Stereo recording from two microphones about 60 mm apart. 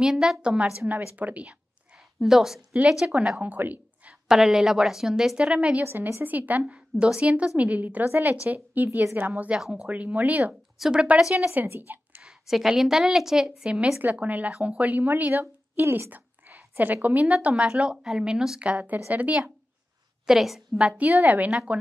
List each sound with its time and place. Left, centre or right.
0.0 s a woman's voice: centre; by 1.6 s right
2.1 s a woman's voice: centre
3.3 s a woman's voice: right
4.1 s speech: centre
5.9 s a woman's voice: right
6.2 s a woman's voice: right
10.8 s speech: centre
11.6 s a woman's voice: right
12.2 s a woman's voice: centre
14.1 s a woman's voice: right; by 18.6 s centre
18.6 s a woman's voice: right
20.2 s a woman's voice: centre
21.0 s a woman's voice: right